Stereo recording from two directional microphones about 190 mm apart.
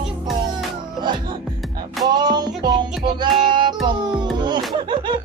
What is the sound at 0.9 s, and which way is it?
Music, 25° right (ahead or behind).